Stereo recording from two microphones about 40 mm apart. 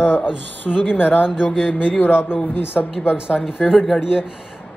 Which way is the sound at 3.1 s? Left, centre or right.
Centre.